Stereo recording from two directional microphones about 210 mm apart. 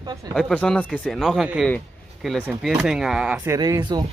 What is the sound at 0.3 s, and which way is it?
Speech, centre (ahead or behind).